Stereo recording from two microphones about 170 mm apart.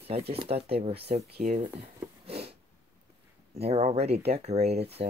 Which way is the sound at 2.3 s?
35° right (ahead or behind).